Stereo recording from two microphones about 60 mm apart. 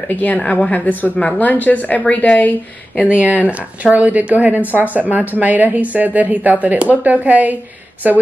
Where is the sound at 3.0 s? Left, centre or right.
Right.